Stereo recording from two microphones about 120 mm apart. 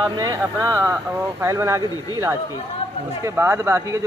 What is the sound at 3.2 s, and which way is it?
Speech, 25° right (ahead or behind).